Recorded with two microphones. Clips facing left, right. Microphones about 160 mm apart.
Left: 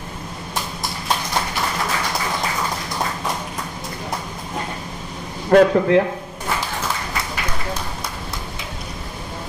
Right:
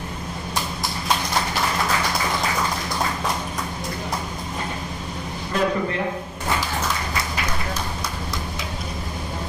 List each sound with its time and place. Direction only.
5.5 s a man's voice: 85° left